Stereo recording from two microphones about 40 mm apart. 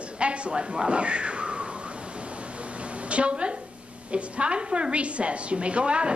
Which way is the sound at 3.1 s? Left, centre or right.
Right.